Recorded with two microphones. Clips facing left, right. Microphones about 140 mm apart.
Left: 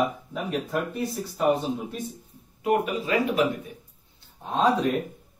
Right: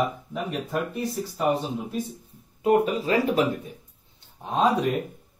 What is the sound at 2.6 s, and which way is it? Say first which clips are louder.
Speech: right 3 dB; 35° right (ahead or behind).